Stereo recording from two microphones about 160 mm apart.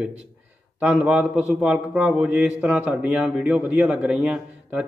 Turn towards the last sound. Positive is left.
turn(degrees=-5)  # may be behind; listen again after turning